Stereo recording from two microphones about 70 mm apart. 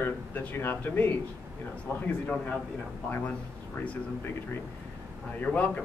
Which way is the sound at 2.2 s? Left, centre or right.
Centre.